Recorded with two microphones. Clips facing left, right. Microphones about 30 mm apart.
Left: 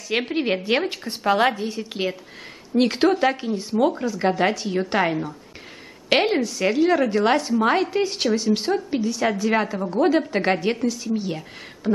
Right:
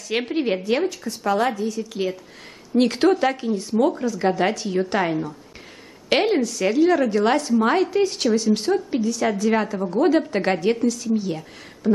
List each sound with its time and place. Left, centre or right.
0.1 s a woman's voice: centre
0.8 s a woman's voice: left
2.7 s a woman's voice: centre